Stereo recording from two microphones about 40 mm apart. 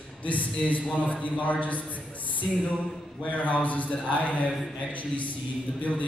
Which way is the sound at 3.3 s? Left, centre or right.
Left.